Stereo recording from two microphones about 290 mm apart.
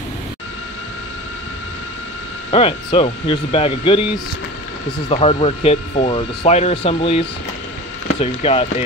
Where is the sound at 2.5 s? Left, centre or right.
Centre.